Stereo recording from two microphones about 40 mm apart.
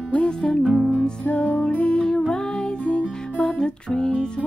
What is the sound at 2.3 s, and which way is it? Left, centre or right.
Music, left.